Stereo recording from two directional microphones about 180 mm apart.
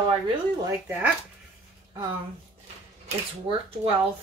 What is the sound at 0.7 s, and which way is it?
Speech, 10° right (ahead or behind).